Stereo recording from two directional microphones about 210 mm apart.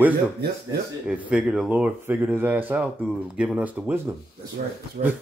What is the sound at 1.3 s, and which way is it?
Speech, centre (ahead or behind).